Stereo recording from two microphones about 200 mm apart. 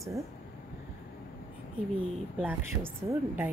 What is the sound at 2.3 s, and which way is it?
A woman's voice, 10° right (ahead or behind).